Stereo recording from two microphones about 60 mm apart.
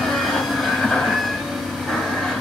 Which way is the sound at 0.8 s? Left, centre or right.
Centre.